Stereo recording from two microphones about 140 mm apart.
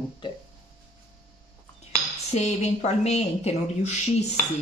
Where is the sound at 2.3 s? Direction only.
55° left (ahead or behind).